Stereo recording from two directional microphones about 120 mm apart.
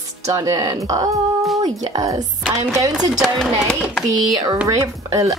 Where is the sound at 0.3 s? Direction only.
30° right (ahead or behind).